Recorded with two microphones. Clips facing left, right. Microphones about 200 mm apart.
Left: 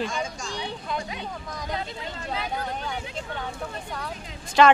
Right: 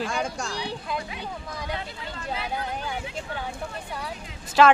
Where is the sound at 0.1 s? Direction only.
65° right (ahead or behind).